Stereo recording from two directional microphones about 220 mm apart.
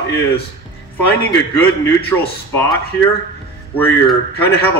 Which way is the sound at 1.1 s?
10° left (ahead or behind).